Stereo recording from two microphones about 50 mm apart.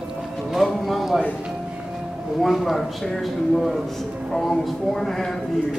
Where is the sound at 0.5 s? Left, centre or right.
Centre.